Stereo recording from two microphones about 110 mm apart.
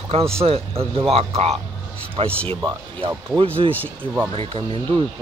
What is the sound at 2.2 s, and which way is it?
Speech, 55° right (ahead or behind).